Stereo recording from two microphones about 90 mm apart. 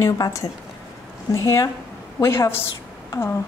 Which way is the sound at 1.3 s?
35° left (ahead or behind).